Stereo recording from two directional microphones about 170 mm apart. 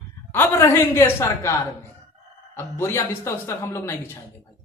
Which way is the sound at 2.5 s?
15° left (ahead or behind).